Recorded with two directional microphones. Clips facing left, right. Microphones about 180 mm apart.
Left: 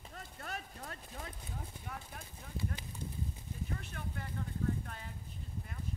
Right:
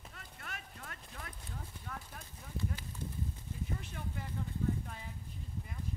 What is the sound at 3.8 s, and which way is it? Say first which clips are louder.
Vehicle: even; 15° right (ahead or behind).